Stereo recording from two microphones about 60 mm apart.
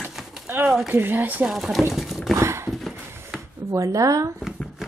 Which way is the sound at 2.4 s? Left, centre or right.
Right.